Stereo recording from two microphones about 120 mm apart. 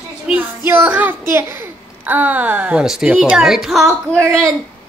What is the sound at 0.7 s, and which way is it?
A child's voice, 15° right (ahead or behind).